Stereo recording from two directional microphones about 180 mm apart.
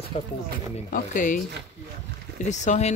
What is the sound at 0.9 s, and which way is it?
Speech, 45° left (ahead or behind).